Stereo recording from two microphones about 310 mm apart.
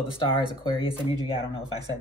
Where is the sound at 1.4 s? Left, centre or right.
Centre.